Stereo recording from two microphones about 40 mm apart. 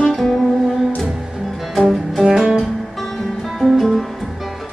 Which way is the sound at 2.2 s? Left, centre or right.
Centre.